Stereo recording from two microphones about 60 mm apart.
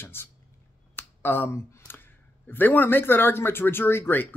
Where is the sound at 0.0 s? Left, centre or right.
Left.